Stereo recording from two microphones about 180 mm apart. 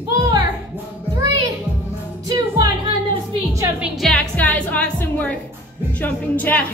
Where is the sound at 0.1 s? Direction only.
20° right (ahead or behind).